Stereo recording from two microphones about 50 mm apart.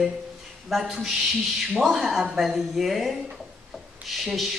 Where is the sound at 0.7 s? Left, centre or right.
Centre.